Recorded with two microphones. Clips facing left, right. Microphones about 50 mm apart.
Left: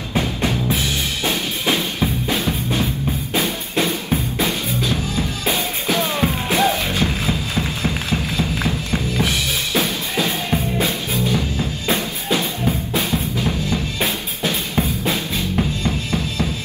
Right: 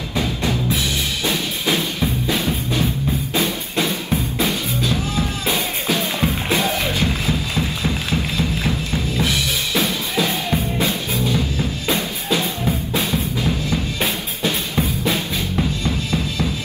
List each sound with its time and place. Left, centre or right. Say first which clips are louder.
0.2 s drum kit: even; left
4.4 s music: even; left
12.6 s drum: even; left
14.4 s music: even; left
15.8 s drum: even; left